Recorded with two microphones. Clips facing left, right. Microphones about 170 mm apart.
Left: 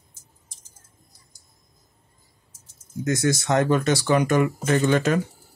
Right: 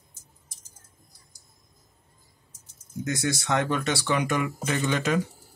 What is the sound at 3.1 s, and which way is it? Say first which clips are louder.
Speech: left 5 dB; 45° left (ahead or behind).